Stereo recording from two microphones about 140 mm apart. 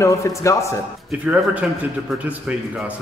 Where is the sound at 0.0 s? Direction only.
20° left (ahead or behind).